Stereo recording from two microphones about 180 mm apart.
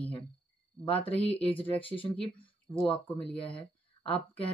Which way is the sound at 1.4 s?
10° left (ahead or behind).